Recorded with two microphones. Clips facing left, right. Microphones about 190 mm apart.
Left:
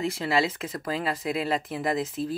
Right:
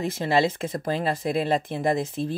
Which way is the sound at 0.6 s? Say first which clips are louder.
Right 4 dB; 30° right (ahead or behind).